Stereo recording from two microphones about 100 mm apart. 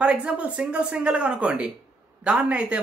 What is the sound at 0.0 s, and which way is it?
Speech, 10° right (ahead or behind).